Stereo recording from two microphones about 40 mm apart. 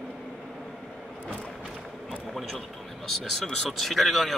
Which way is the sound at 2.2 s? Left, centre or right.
Centre.